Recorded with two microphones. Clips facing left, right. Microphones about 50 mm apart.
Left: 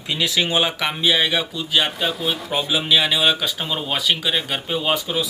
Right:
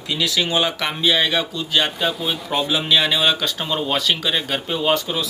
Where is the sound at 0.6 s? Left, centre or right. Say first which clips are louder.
Even; centre.